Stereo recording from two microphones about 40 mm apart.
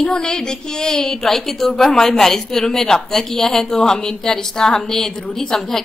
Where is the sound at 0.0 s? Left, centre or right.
Centre.